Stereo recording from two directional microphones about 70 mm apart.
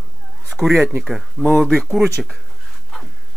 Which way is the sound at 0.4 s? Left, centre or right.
Centre.